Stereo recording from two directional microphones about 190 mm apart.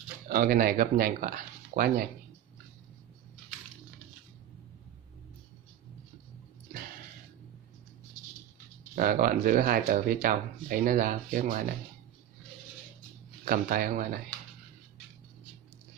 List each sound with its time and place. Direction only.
0.3 s speech: 50° right (ahead or behind)
8.9 s speech: 50° right (ahead or behind)
13.5 s speech: 50° right (ahead or behind)